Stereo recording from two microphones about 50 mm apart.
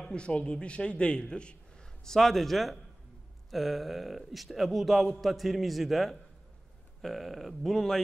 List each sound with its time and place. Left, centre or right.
0.0 s a man's voice: centre
2.0 s speech: centre